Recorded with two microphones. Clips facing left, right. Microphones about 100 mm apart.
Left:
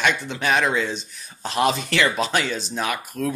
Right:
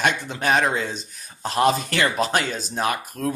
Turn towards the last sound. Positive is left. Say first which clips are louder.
# right 1 dB
turn(degrees=-35)  # may be behind; listen again after turning